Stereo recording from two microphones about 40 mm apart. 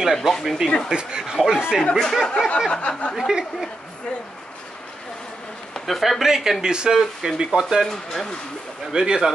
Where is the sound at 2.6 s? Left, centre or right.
Left.